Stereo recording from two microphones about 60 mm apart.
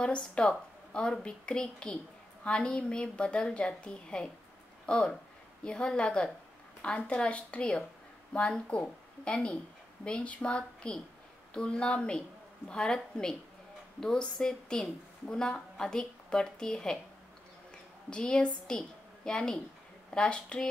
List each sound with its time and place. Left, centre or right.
0.0 s a woman's voice: centre
18.1 s a woman's voice: centre